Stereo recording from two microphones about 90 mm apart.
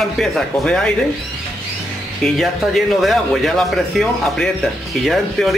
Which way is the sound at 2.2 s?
5° left (ahead or behind).